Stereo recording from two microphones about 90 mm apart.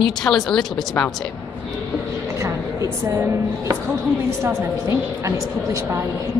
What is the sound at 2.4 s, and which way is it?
A woman's voice, 35° right (ahead or behind).